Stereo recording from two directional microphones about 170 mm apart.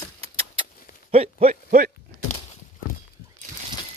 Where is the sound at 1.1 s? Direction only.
40° right (ahead or behind).